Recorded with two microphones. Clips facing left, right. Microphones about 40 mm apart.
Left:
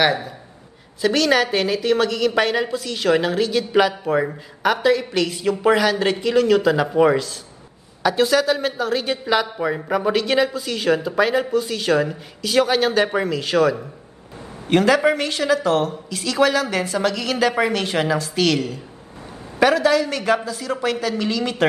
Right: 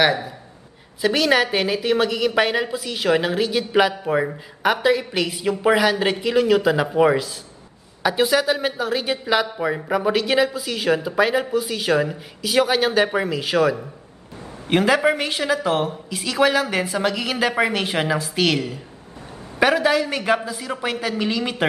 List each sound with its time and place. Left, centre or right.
0.0 s a woman's voice: centre